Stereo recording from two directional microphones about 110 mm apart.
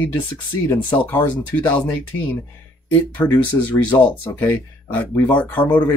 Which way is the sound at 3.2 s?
15° left (ahead or behind).